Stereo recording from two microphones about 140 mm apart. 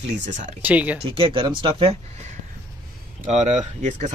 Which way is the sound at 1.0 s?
40° right (ahead or behind).